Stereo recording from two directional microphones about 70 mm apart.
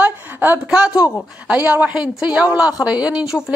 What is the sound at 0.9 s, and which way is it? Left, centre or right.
Speech, left.